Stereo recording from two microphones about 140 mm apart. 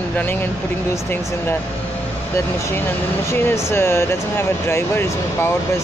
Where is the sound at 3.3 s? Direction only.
20° left (ahead or behind).